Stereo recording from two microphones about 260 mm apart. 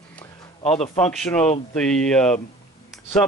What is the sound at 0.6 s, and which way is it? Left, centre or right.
Speech, left.